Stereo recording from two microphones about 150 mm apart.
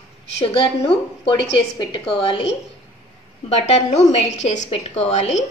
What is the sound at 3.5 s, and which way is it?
Speech, 50° left (ahead or behind).